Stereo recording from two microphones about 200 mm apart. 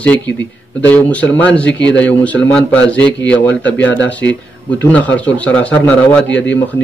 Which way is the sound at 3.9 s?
65° left (ahead or behind).